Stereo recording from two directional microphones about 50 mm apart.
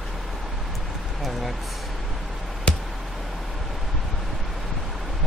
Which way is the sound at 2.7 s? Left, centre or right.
Left.